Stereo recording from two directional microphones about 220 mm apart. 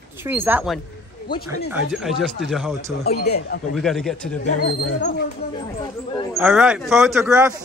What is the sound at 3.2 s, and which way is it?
Speech, 45° left (ahead or behind).